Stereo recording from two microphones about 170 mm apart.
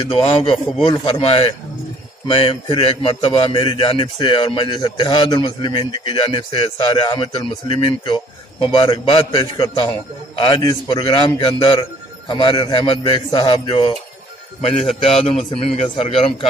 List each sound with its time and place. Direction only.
0.1 s a man's voice: 35° left (ahead or behind)
15.0 s a man's voice: 35° left (ahead or behind)